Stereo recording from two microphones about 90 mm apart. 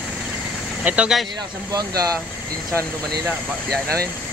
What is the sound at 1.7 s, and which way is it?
Speech, 45° right (ahead or behind).